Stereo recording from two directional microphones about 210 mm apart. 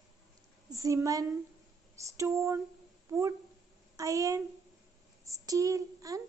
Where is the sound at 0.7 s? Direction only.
15° right (ahead or behind).